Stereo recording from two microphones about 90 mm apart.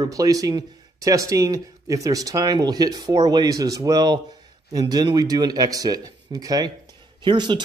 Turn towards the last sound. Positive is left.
turn(degrees=-60)  # may be behind; listen again after turning